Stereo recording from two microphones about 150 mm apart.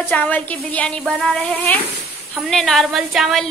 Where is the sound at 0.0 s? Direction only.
10° left (ahead or behind).